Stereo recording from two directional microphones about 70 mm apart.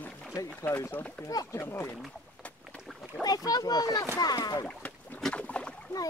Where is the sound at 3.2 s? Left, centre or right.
Left.